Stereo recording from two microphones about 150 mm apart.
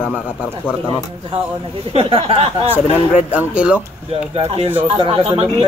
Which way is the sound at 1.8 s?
40° right (ahead or behind).